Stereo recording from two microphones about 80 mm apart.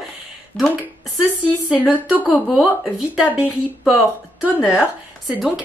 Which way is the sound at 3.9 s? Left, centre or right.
Right.